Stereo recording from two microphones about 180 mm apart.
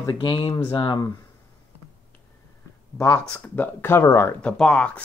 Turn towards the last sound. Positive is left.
turn(degrees=5)  # may be behind; listen again after turning